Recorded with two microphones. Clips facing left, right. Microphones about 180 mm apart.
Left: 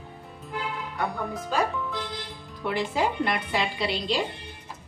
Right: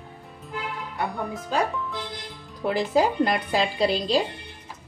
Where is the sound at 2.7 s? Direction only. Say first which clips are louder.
Right 4 dB; 40° right (ahead or behind).